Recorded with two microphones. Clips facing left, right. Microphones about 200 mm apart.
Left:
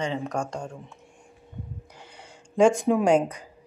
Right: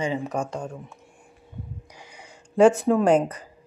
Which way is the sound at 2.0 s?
10° right (ahead or behind).